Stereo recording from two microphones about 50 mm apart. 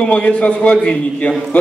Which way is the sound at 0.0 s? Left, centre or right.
Left.